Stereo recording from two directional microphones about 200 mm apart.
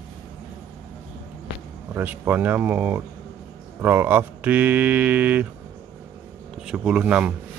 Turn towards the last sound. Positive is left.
turn(degrees=-5)  # may be behind; listen again after turning